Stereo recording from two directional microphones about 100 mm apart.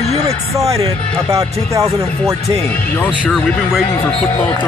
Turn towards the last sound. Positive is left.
turn(degrees=5)  # may be behind; listen again after turning